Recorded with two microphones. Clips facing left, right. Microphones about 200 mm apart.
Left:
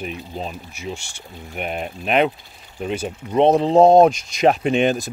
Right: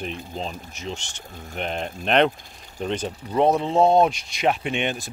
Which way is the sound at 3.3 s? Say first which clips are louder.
Left 5 dB; 25° left (ahead or behind).